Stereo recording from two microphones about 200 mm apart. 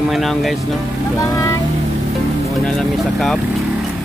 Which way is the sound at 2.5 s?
Centre (ahead or behind).